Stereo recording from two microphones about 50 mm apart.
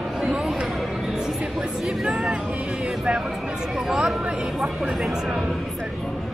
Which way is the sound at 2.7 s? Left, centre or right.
Right.